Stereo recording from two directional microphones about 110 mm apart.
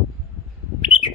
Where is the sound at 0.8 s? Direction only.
55° left (ahead or behind).